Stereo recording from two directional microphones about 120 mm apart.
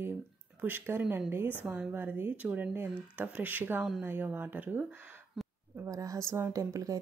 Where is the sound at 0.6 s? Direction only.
15° right (ahead or behind).